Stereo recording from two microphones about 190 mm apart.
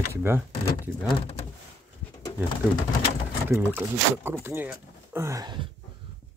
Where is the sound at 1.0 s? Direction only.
30° left (ahead or behind).